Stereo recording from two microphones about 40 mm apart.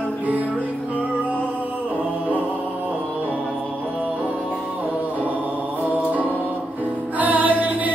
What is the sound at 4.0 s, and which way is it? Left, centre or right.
Music, right.